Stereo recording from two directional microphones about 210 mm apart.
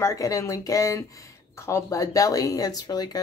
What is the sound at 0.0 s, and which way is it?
Speech, 15° left (ahead or behind).